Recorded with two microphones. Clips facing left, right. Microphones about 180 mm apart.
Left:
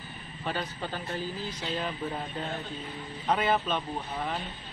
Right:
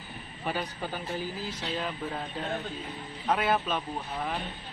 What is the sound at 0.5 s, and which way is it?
Speech, 10° right (ahead or behind).